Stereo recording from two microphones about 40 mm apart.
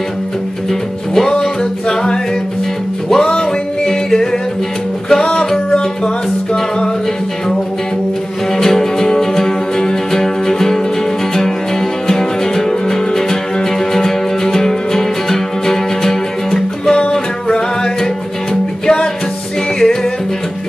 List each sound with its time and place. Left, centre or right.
0.7 s music: centre
1.6 s a capella: left
3.1 s music: centre
8.5 s music: centre